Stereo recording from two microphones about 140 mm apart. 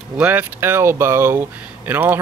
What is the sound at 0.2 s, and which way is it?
Speech, 15° right (ahead or behind).